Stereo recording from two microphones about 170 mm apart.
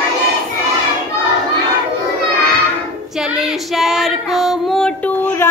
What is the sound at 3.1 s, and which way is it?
Female singing, 5° right (ahead or behind).